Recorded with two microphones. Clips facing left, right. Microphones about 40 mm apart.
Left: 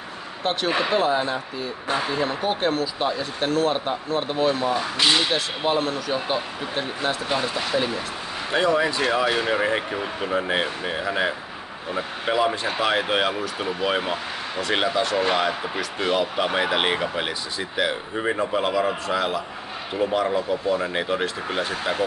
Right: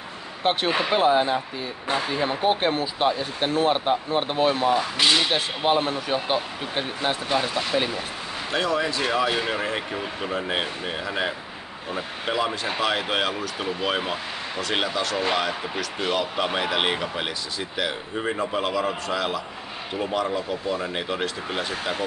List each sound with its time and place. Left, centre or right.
0.4 s speech: right
1.9 s speech: centre
2.4 s speech: right
4.7 s speech: centre
5.7 s speech: right
7.3 s speech: centre